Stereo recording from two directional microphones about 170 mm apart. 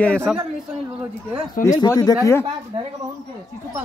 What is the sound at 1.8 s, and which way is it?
Speech, 25° left (ahead or behind).